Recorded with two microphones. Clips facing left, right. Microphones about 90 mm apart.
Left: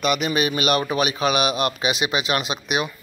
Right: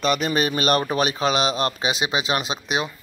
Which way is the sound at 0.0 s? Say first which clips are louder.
Even; 35° right (ahead or behind).